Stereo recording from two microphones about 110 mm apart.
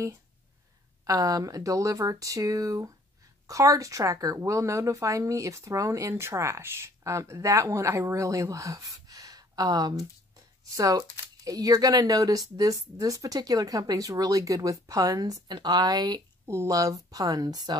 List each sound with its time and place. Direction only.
1.0 s speech: 35° right (ahead or behind)